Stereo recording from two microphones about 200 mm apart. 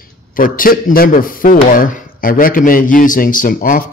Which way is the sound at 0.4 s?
45° left (ahead or behind).